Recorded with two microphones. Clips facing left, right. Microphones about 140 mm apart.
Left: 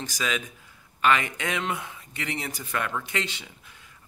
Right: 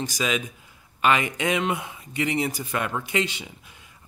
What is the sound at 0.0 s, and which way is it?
Speech, 15° right (ahead or behind).